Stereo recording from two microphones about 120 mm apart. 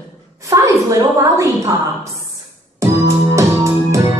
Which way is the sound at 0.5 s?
30° right (ahead or behind).